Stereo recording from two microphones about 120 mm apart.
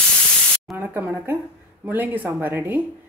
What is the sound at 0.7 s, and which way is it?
A woman's voice, 15° right (ahead or behind).